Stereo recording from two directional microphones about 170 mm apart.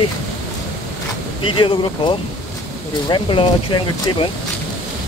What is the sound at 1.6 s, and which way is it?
Speech, 30° left (ahead or behind).